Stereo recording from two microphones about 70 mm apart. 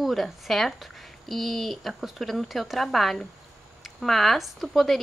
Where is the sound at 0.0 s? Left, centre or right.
Centre.